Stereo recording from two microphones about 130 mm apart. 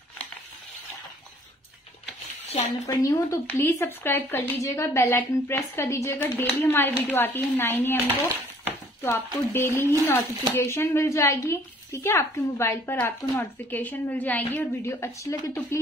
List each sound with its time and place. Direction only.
2.9 s speech: 25° left (ahead or behind)
9.0 s speech: 20° left (ahead or behind)